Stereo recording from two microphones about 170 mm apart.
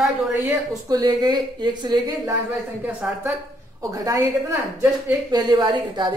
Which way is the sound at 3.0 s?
10° right (ahead or behind).